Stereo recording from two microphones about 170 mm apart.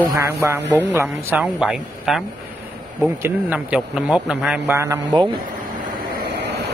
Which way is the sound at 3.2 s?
10° right (ahead or behind).